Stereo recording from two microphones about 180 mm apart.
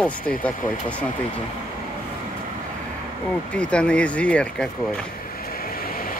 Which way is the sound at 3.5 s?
5° left (ahead or behind).